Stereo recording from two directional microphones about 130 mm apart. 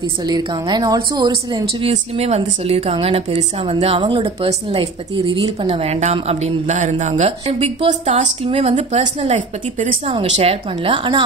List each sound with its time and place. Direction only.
0.2 s a woman's voice: 35° right (ahead or behind)
1.8 s a woman's voice: 50° right (ahead or behind)
5.3 s a woman's voice: 35° right (ahead or behind)
5.7 s a woman's voice: 55° right (ahead or behind)
8.5 s a woman's voice: 45° right (ahead or behind)